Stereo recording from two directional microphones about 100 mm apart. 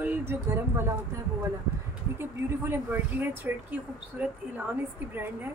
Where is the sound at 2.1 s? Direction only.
20° right (ahead or behind).